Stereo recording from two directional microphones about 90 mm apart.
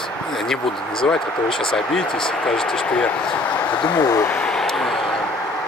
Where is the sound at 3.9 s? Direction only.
45° left (ahead or behind).